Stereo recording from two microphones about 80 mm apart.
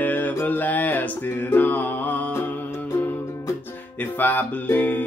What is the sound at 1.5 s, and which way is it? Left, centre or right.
Music, left.